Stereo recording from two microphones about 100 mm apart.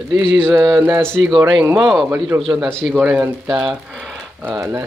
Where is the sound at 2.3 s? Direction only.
30° right (ahead or behind).